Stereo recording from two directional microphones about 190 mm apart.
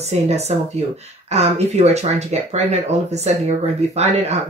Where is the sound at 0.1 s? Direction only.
35° right (ahead or behind).